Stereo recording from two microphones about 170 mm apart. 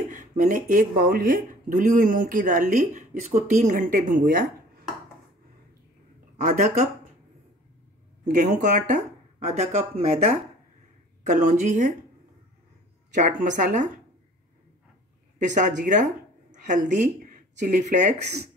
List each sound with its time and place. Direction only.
0.1 s speech: 50° right (ahead or behind)
6.3 s speech: 45° right (ahead or behind)
8.3 s speech: 45° right (ahead or behind)
13.1 s speech: 50° right (ahead or behind)
15.3 s speech: 45° right (ahead or behind)